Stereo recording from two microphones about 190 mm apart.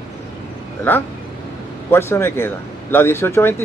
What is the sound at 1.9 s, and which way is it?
Speech, 10° left (ahead or behind).